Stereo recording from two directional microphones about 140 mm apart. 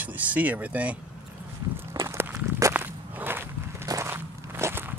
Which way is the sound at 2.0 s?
20° right (ahead or behind).